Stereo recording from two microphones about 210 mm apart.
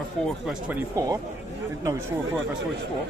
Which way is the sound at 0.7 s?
15° right (ahead or behind).